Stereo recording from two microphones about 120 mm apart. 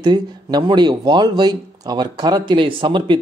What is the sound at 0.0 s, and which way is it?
Speech, 40° right (ahead or behind).